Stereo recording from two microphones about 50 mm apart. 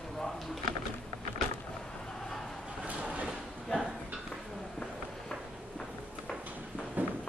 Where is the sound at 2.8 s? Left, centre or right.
Right.